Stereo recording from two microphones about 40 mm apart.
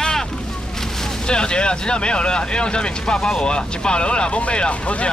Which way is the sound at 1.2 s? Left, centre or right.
Left.